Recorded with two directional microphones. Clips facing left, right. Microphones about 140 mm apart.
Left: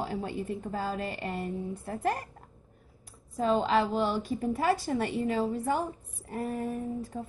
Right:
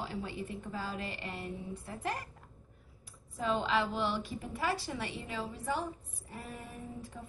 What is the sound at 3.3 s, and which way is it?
A woman's voice, 40° left (ahead or behind).